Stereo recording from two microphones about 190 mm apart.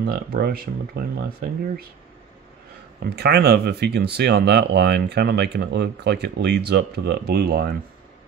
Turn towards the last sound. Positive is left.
turn(degrees=-55)  # may be behind; listen again after turning